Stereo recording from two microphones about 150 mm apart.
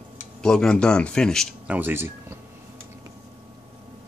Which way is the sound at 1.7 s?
10° right (ahead or behind).